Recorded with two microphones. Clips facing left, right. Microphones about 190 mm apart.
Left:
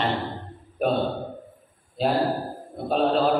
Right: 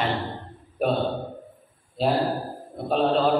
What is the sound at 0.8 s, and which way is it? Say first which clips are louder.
Mantra: even; 5° right (ahead or behind).